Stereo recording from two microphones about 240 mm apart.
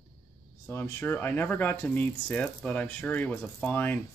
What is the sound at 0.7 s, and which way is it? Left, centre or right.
Speech, centre.